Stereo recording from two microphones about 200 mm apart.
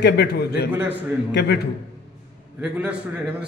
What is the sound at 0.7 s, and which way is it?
Speech, 10° right (ahead or behind).